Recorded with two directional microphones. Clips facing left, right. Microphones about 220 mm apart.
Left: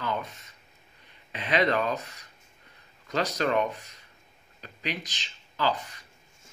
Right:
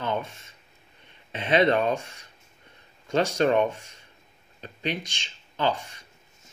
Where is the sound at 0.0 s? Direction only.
25° right (ahead or behind).